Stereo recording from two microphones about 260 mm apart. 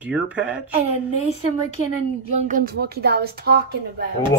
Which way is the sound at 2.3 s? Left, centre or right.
Right.